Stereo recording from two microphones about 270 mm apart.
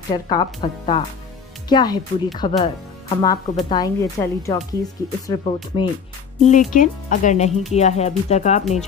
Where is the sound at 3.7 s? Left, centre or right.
Centre.